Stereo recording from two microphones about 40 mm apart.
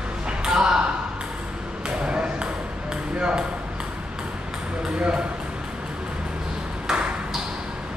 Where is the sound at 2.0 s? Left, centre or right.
Right.